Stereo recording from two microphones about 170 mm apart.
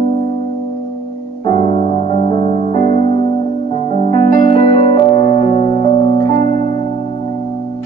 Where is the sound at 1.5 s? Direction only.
35° left (ahead or behind).